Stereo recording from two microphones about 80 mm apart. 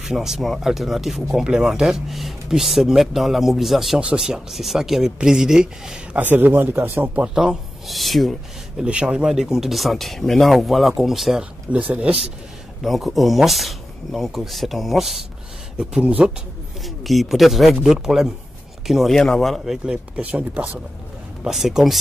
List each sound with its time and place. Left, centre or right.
0.0 s speech: centre
6.2 s speech: right
7.3 s speech: centre
8.8 s speech: centre
11.7 s speech: centre
12.8 s speech: centre
15.8 s speech: centre
16.8 s speech: centre
20.2 s speech: centre
21.5 s speech: centre